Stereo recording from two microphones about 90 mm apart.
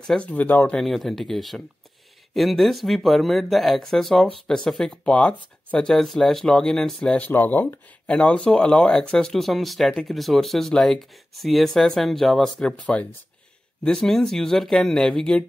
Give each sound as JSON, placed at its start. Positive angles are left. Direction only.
{"t": 0.0, "sound": "speech", "side_deg": 5}
{"t": 0.3, "sound": "speech", "side_deg": 20}
{"t": 0.7, "sound": "speech", "side_deg": 0}
{"t": 7.2, "sound": "speech", "side_deg": 20}
{"t": 8.1, "sound": "speech", "side_deg": 10}